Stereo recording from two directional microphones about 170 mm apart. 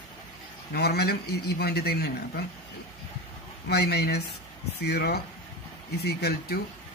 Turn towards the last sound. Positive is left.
turn(degrees=70)  # may be behind; listen again after turning